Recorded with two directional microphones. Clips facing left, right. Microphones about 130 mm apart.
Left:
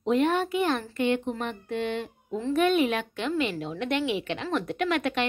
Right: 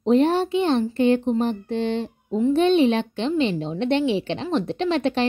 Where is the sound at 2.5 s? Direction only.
30° right (ahead or behind).